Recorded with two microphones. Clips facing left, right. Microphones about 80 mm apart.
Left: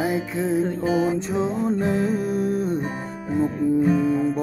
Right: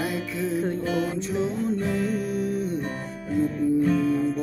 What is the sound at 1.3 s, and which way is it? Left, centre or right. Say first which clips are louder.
Music: left 3 dB; left.